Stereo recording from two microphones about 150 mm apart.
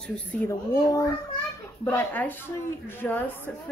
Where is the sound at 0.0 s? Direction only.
10° left (ahead or behind).